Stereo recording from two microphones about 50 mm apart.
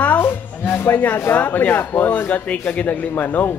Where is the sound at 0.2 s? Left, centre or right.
Left.